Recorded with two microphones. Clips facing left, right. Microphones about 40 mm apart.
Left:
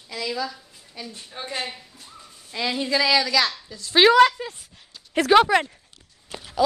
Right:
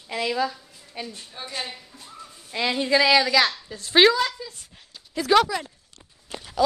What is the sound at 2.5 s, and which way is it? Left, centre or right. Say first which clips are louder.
A woman's voice: right 2 dB; centre.